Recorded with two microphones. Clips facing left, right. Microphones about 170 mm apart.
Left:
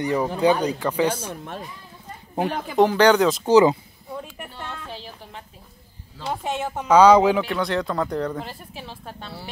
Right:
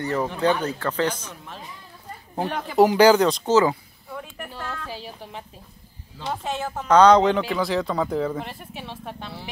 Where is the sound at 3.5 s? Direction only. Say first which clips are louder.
Left 5 dB; 15° left (ahead or behind).